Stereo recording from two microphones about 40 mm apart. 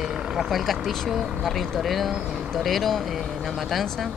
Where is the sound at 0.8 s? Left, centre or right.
Centre.